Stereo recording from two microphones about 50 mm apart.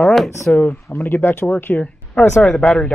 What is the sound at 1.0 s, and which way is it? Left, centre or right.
Speech, left.